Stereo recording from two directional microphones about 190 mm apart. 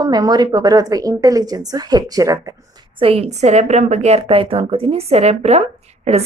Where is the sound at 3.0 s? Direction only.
30° right (ahead or behind).